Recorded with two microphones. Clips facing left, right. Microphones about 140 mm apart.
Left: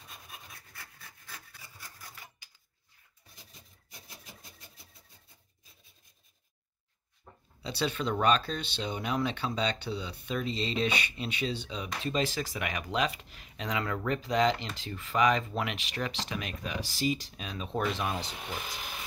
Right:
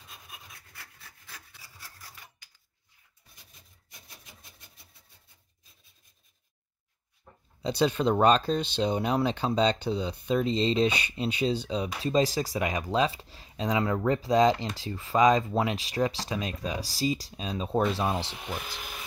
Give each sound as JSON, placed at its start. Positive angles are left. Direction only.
{"t": 1.2, "sound": "rub", "side_deg": 0}
{"t": 7.6, "sound": "speech", "side_deg": -40}